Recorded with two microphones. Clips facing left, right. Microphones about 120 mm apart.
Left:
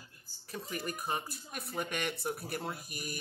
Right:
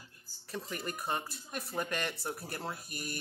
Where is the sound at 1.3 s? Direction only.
35° right (ahead or behind).